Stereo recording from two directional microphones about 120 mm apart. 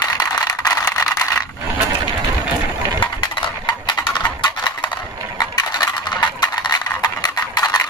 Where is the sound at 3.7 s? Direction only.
40° left (ahead or behind).